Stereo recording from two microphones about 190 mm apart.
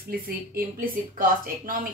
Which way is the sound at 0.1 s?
50° right (ahead or behind).